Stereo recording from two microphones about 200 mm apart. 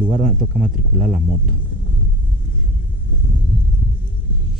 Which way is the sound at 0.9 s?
40° right (ahead or behind).